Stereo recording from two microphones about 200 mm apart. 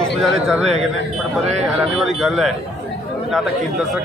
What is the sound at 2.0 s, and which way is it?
Speech, centre (ahead or behind).